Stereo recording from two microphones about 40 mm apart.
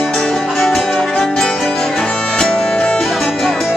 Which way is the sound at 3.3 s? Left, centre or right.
Centre.